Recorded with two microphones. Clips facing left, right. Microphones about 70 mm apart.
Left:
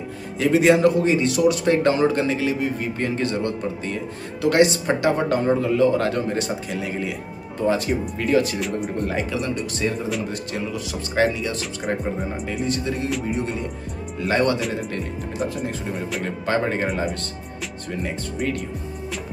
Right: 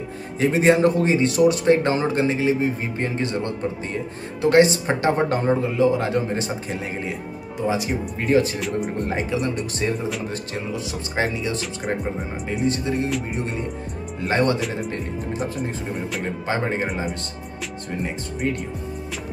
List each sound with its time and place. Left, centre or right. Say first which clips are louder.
0.4 s speech: left 1 dB; right
5.5 s speech: left 2 dB; centre
7.5 s speech: left 2 dB; centre
8.2 s speech: right 2 dB; right
8.5 s speech: even; centre
9.0 s speech: even; right
9.4 s speech: right 1 dB; right
10.5 s speech: left 1 dB; right
11.6 s speech: even; centre
12.6 s speech: right 3 dB; right
14.6 s speech: left 1 dB; centre
15.9 s speech: left 1 dB; centre
16.4 s speech: left 3 dB; centre
16.8 s speech: left 2 dB; centre